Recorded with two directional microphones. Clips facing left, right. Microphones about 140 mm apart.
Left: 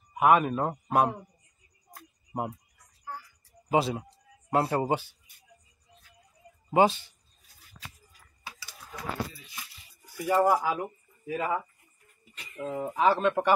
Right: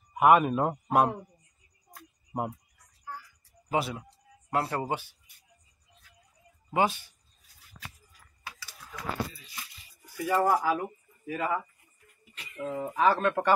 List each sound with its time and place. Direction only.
0.1 s a man's voice: centre (ahead or behind)
2.3 s speech: 5° left (ahead or behind)
3.7 s speech: 25° left (ahead or behind)
6.7 s speech: 25° left (ahead or behind)
10.1 s speech: 20° left (ahead or behind)